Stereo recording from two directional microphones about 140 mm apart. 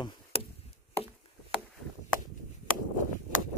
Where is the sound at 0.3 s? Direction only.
45° left (ahead or behind).